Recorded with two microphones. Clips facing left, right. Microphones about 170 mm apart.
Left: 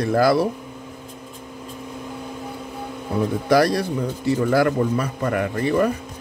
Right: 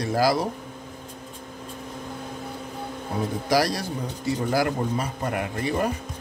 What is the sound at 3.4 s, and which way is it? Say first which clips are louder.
A man's voice: left 6 dB; 55° left (ahead or behind).